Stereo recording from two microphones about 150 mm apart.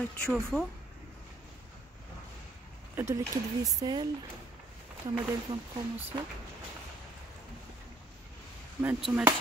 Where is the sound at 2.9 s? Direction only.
20° right (ahead or behind).